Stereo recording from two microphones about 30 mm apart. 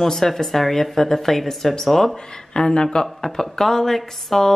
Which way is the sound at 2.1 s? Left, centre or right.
Left.